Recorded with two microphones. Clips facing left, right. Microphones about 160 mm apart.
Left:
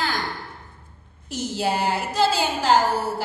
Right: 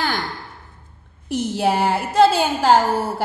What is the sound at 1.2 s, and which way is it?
A woman's voice, 60° right (ahead or behind).